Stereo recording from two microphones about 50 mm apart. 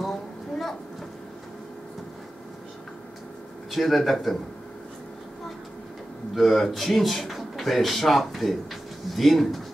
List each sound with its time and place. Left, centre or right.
0.0 s a sound: centre
3.7 s speech: centre
6.3 s speech: centre